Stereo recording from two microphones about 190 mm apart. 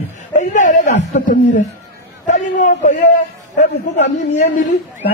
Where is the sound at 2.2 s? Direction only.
40° left (ahead or behind).